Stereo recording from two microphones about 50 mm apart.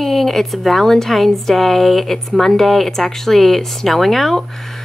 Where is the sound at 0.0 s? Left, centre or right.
Centre.